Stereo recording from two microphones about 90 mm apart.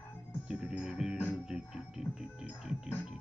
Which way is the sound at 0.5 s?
15° right (ahead or behind).